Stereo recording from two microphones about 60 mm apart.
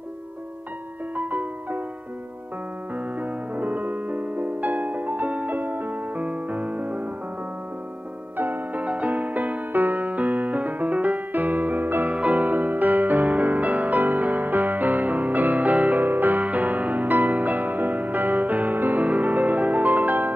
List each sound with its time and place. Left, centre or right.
1.1 s music: right
3.0 s music: right
8.4 s music: right